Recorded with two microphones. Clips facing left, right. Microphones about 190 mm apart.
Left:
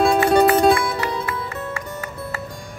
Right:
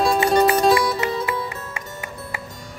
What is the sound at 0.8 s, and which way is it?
Music, 20° right (ahead or behind).